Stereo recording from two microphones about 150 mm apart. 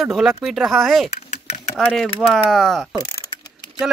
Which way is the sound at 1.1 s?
45° left (ahead or behind).